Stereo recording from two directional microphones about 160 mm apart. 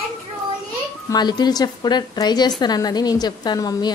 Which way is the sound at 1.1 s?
25° left (ahead or behind).